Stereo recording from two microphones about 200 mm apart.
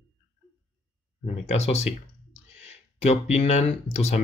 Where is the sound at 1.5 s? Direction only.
30° left (ahead or behind).